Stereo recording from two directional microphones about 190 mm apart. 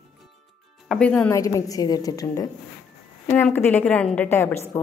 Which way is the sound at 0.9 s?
5° left (ahead or behind).